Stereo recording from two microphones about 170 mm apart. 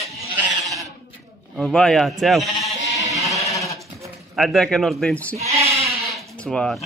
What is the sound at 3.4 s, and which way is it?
Goat, 20° left (ahead or behind).